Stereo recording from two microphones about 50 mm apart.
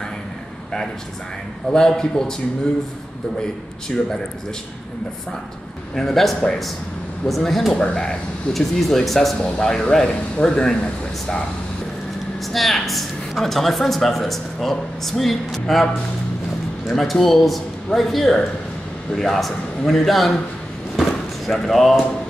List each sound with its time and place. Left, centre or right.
1.7 s speech: centre
5.9 s speech: centre
7.7 s speech: centre
8.5 s speech: centre
9.4 s speech: centre
12.5 s speech: centre
20.9 s a sound: centre